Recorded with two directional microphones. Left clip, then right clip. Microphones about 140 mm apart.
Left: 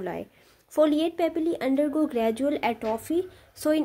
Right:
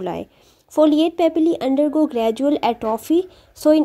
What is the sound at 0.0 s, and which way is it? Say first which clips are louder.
Speech: right 7 dB; 50° right (ahead or behind).